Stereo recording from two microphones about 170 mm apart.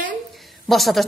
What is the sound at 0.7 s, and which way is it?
Speech, centre (ahead or behind).